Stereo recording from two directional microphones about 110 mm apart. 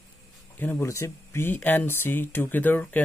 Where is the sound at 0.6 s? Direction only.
25° left (ahead or behind).